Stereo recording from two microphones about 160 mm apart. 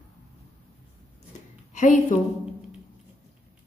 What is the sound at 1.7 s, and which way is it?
Speech, 50° left (ahead or behind).